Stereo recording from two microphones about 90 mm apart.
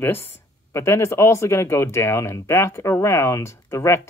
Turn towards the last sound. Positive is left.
turn(degrees=30)  # may be behind; listen again after turning